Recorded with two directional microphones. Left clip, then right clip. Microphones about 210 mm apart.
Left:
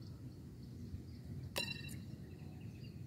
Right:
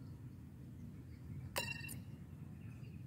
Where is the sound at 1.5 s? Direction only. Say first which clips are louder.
Left 1 dB; 20° right (ahead or behind).